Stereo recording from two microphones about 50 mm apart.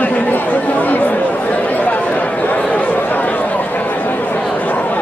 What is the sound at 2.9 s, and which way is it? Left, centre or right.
Chatter, left.